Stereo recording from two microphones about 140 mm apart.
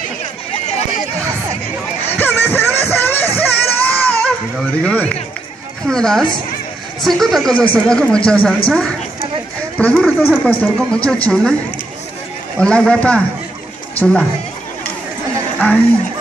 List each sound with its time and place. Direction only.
0.5 s a sound: 50° left (ahead or behind)
2.0 s music: 15° left (ahead or behind)
4.8 s speech: 10° left (ahead or behind)
9.8 s speech: 10° left (ahead or behind)
12.5 s speech: 5° left (ahead or behind)